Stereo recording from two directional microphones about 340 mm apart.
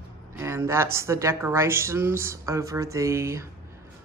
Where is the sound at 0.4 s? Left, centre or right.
Centre.